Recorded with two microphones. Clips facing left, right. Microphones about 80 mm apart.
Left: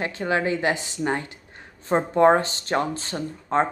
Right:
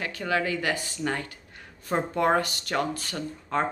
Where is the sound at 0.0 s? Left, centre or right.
Left.